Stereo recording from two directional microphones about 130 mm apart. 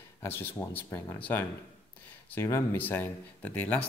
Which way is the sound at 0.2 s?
15° left (ahead or behind).